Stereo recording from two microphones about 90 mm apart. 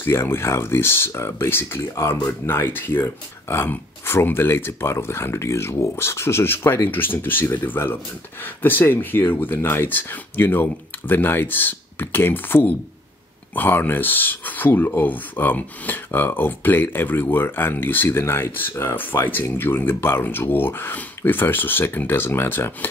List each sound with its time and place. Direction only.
0.0 s speech: 25° left (ahead or behind)